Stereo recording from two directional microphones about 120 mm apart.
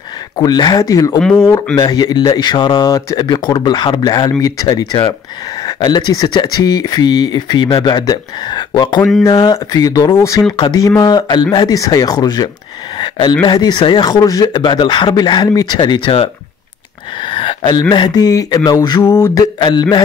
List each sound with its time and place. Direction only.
0.4 s speech: 35° left (ahead or behind)
12.9 s a sound: 40° left (ahead or behind)
13.5 s speech: 35° left (ahead or behind)
17.2 s a sound: 45° left (ahead or behind)
17.8 s speech: 35° left (ahead or behind)
19.0 s mantra: 20° left (ahead or behind)
19.6 s speech: 35° left (ahead or behind)